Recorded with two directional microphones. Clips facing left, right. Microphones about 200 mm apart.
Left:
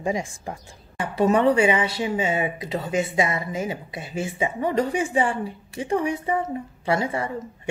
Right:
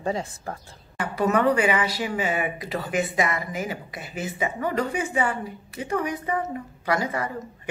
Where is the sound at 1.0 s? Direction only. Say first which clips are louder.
Left 3 dB; 30° left (ahead or behind).